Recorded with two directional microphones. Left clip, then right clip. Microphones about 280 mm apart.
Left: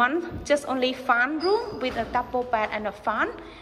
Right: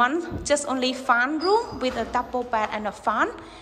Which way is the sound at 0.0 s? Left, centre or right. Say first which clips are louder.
Right 1 dB; centre.